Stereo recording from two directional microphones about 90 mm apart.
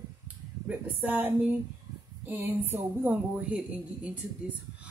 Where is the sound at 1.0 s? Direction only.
20° right (ahead or behind).